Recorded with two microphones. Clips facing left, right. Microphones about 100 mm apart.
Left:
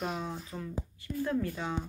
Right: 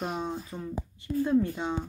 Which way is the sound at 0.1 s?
25° right (ahead or behind).